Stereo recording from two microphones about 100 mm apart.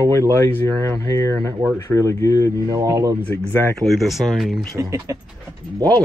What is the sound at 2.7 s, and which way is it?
Speech, 35° right (ahead or behind).